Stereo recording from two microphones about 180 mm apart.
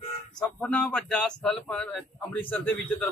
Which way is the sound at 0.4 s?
5° left (ahead or behind).